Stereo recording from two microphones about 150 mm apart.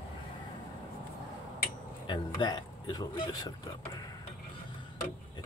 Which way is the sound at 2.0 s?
30° left (ahead or behind).